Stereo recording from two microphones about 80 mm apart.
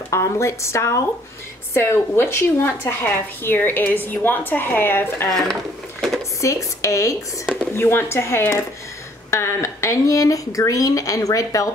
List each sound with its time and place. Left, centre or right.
0.1 s a woman's voice: left
5.3 s a sound: centre
6.4 s a woman's voice: left
7.4 s a woman's voice: left